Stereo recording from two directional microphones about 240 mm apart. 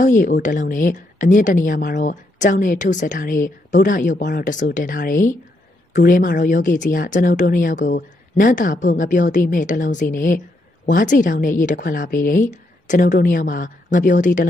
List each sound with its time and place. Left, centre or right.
0.0 s speech: left